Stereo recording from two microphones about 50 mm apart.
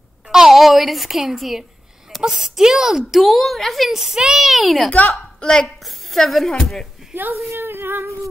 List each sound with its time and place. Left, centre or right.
0.3 s a woman's voice: centre
3.1 s a child's voice: centre
3.9 s a child's voice: centre
4.8 s a woman's voice: left
5.4 s a child's voice: centre
7.3 s a sound: right